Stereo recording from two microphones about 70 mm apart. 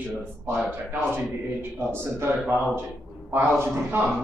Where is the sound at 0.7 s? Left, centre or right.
Right.